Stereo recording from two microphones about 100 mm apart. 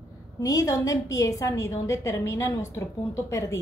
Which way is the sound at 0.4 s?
35° left (ahead or behind).